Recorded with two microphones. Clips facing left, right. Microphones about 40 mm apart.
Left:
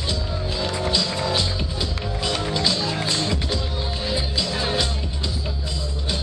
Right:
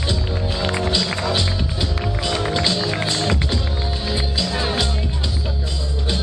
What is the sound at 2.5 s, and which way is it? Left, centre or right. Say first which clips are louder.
Music: right 2 dB; centre.